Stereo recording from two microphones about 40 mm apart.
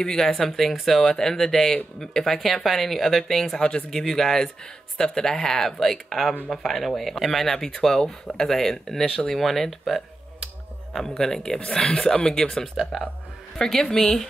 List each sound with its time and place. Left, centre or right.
0.0 s speech: centre